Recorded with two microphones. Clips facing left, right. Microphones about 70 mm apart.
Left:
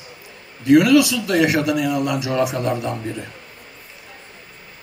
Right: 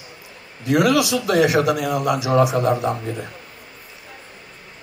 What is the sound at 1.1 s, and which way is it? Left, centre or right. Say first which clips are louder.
A man's voice: right 1 dB; right.